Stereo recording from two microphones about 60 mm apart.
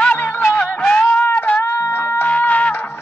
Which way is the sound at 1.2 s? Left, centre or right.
Left.